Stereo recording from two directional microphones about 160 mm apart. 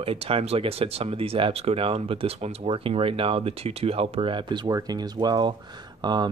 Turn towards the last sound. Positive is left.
turn(degrees=-25)  # may be behind; listen again after turning